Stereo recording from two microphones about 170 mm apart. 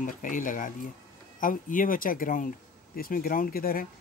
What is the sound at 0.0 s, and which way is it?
Speech, 50° left (ahead or behind).